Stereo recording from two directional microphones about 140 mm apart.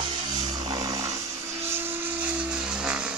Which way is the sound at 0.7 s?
25° right (ahead or behind).